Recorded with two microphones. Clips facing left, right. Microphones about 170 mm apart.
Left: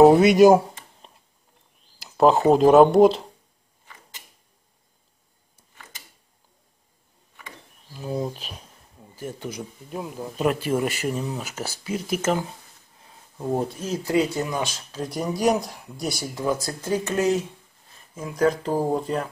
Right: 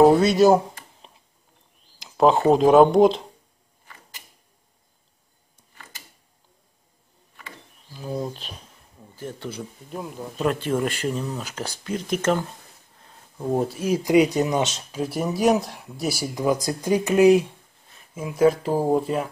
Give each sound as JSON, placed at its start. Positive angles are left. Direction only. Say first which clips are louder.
{"t": 0.1, "sound": "speech", "louder": "left 2 dB", "side_deg": 15}
{"t": 2.0, "sound": "speech", "louder": "even", "side_deg": 0}
{"t": 7.9, "sound": "speech", "louder": "left 1 dB", "side_deg": 5}
{"t": 13.5, "sound": "speech", "louder": "right 3 dB", "side_deg": -5}
{"t": 14.9, "sound": "speech", "louder": "right 2 dB", "side_deg": -5}